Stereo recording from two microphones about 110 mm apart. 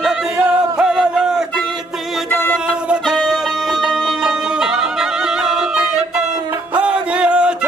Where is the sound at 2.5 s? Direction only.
5° right (ahead or behind).